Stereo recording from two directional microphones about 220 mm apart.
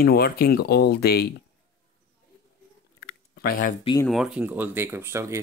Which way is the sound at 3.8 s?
20° left (ahead or behind).